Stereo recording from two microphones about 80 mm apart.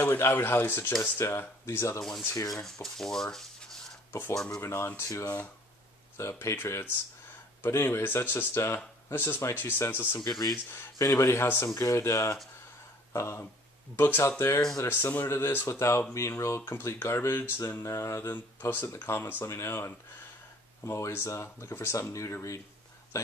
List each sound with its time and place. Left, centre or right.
0.2 s speech: left
2.5 s speech: centre
4.1 s speech: left
4.5 s speech: left
6.5 s speech: left
11.0 s speech: left
18.3 s speech: left